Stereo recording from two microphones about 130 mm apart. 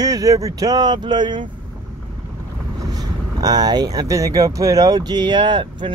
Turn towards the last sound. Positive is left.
turn(degrees=-35)  # may be behind; listen again after turning